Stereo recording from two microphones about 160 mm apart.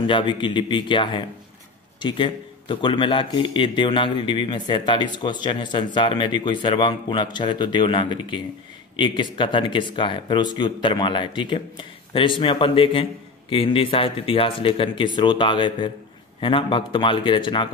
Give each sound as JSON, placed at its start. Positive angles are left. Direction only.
{"t": 0.0, "sound": "speech", "side_deg": 30}